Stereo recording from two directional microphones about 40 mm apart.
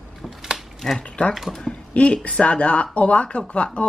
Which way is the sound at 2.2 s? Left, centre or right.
Left.